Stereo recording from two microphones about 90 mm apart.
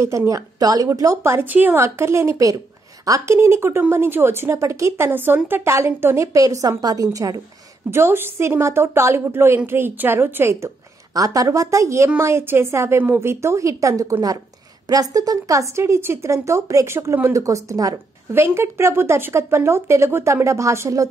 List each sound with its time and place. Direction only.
0.0 s a woman's voice: 35° right (ahead or behind)
7.9 s speech: 25° right (ahead or behind)
11.1 s a woman's voice: 40° right (ahead or behind)
18.3 s speech: 30° right (ahead or behind)